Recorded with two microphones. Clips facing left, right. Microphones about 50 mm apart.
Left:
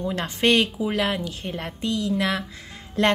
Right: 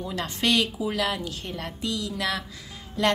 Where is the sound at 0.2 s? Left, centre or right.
Left.